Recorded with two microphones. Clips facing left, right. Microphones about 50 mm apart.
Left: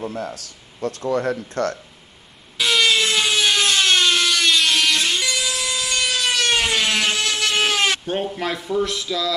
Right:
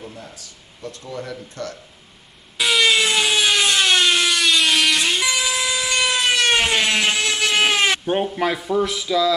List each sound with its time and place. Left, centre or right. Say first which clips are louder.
0.0 s speech: left 9 dB; left
2.5 s wood: right 1 dB; centre